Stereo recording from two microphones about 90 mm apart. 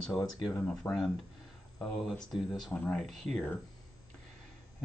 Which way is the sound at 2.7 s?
15° left (ahead or behind).